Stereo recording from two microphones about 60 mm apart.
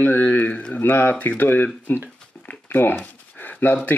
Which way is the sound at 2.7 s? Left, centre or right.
Left.